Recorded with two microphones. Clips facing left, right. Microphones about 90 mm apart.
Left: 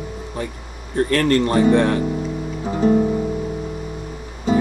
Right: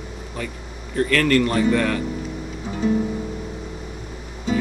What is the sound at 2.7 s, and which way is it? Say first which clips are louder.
Music: left 5 dB; 45° left (ahead or behind).